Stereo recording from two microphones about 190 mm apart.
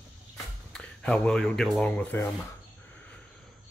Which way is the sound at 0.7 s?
5° left (ahead or behind).